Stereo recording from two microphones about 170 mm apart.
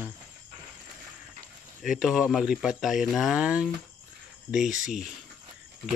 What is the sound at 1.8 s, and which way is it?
Speech, centre (ahead or behind).